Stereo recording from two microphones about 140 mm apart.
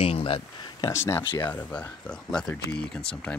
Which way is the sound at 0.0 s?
40° left (ahead or behind).